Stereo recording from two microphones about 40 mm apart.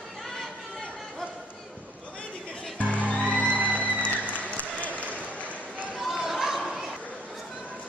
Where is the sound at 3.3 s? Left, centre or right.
Left.